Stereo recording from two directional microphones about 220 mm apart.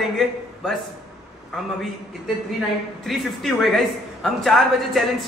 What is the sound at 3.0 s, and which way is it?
A man's voice, centre (ahead or behind).